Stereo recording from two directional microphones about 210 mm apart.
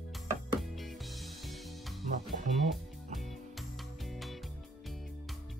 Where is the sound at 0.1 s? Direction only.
Centre (ahead or behind).